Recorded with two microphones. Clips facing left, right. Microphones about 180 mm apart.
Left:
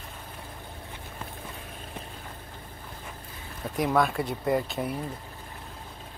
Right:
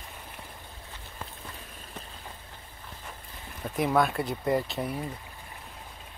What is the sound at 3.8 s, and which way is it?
Speech, centre (ahead or behind).